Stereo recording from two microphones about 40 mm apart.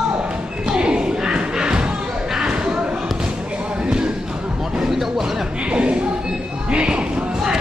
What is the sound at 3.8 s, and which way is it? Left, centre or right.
Basketball bounce, right.